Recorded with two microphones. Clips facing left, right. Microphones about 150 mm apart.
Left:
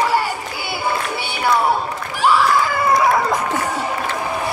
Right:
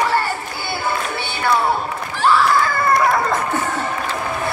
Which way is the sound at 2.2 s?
10° left (ahead or behind).